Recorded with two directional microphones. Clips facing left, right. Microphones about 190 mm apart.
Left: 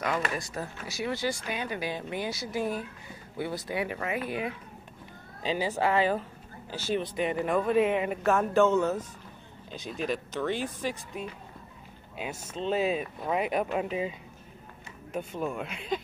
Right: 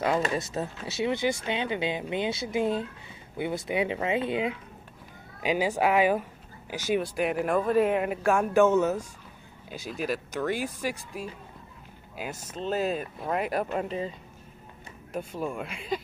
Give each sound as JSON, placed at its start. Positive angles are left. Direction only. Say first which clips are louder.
{"t": 0.0, "sound": "speech", "louder": "right 4 dB", "side_deg": -25}
{"t": 15.1, "sound": "speech", "louder": "even", "side_deg": 0}